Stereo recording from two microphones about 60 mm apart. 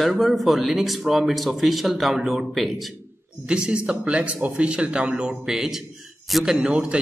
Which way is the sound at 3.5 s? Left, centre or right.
Centre.